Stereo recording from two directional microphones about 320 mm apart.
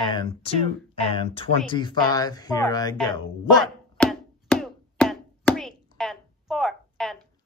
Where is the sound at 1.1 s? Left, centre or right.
Centre.